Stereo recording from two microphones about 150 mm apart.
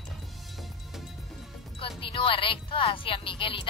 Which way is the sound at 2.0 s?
35° left (ahead or behind).